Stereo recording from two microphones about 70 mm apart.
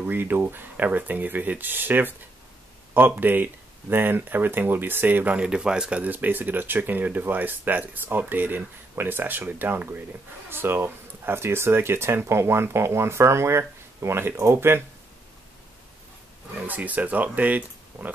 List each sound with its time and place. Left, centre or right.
0.0 s speech: right
16.6 s speech: right